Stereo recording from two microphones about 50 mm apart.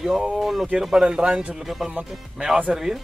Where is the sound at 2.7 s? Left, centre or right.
Centre.